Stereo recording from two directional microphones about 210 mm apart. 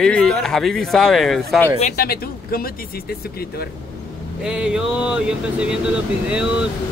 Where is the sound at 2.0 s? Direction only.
45° left (ahead or behind).